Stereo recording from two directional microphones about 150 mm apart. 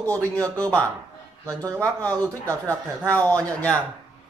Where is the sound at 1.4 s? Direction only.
25° right (ahead or behind).